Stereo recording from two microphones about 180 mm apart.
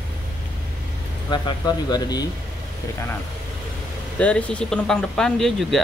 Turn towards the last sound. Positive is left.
turn(degrees=0)  # may be behind; listen again after turning